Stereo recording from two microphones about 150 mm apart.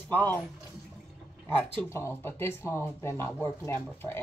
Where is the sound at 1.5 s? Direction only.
10° left (ahead or behind).